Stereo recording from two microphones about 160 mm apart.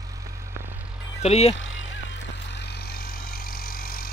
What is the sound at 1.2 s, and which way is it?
Speech, 40° left (ahead or behind).